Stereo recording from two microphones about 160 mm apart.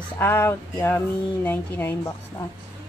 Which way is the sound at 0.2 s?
15° left (ahead or behind).